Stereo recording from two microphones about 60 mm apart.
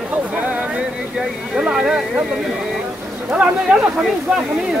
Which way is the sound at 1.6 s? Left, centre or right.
Centre.